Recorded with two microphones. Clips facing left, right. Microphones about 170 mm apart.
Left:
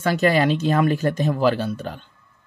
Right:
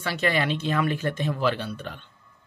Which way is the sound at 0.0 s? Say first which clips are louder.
Left 7 dB; 45° left (ahead or behind).